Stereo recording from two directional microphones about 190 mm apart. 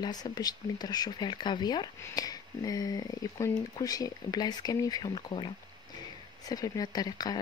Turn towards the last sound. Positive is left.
turn(degrees=20)  # may be behind; listen again after turning